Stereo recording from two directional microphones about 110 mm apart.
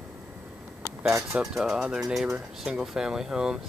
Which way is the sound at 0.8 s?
25° right (ahead or behind).